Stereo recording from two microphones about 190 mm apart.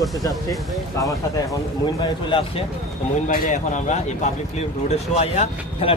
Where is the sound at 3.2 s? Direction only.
45° left (ahead or behind).